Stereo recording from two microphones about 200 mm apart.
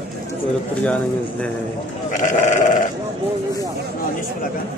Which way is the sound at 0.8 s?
5° left (ahead or behind).